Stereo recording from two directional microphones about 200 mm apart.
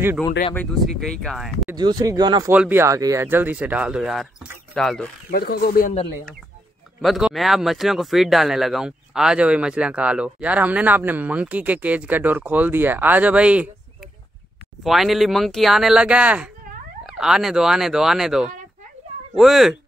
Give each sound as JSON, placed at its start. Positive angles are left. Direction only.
{"t": 0.6, "sound": "speech", "side_deg": 0}
{"t": 1.8, "sound": "speech", "side_deg": -20}
{"t": 2.5, "sound": "speech", "side_deg": -10}
{"t": 5.3, "sound": "speech", "side_deg": 50}
{"t": 7.0, "sound": "speech", "side_deg": 0}
{"t": 14.8, "sound": "speech", "side_deg": 0}